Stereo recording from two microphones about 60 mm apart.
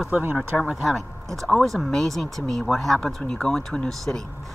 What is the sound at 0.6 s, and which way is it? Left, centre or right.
Speech, centre.